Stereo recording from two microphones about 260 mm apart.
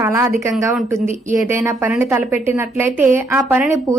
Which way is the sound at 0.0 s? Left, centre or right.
Centre.